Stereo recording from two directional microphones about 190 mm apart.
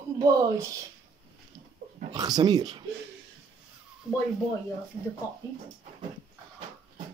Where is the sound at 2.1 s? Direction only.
20° right (ahead or behind).